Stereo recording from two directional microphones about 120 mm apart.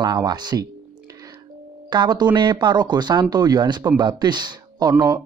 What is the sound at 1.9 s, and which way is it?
Speech, 35° right (ahead or behind).